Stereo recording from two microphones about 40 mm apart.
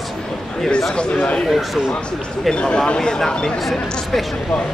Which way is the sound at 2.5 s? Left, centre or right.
Left.